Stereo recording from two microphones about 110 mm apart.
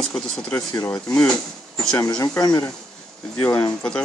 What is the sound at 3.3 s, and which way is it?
Speech, 15° left (ahead or behind).